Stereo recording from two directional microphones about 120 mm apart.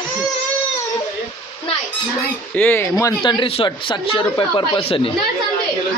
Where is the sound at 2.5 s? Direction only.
15° left (ahead or behind).